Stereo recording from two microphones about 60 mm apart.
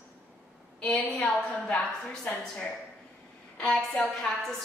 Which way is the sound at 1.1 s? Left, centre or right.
Centre.